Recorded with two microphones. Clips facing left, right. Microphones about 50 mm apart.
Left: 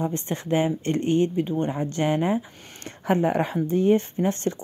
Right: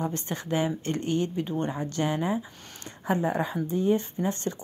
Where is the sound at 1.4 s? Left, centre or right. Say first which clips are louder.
Left 4 dB; centre.